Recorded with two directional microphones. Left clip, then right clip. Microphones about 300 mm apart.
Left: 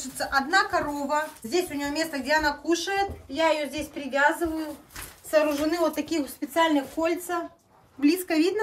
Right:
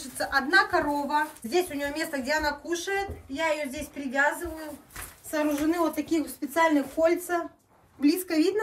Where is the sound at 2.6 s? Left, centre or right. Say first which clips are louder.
Left 4 dB; left.